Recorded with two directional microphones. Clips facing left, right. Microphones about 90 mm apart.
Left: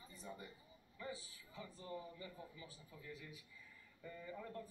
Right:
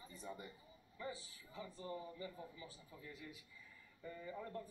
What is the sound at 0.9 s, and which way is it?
A man's voice, 30° right (ahead or behind).